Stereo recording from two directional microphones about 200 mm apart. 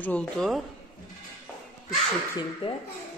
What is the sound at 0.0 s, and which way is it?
Speech, 5° left (ahead or behind).